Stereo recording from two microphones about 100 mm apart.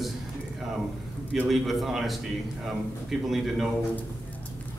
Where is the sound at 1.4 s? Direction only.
Centre (ahead or behind).